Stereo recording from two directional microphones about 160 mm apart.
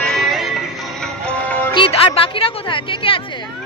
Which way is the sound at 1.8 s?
35° left (ahead or behind).